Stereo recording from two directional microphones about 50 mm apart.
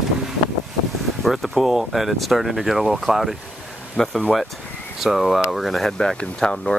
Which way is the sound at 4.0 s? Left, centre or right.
Centre.